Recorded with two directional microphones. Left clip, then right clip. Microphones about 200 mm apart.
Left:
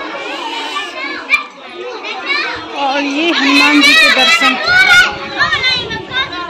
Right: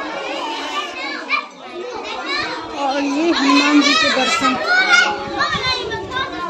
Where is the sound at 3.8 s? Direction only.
45° right (ahead or behind).